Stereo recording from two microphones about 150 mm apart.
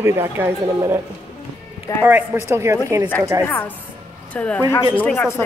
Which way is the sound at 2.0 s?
15° right (ahead or behind).